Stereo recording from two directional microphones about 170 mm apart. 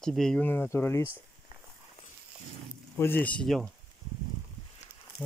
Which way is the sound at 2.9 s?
10° left (ahead or behind).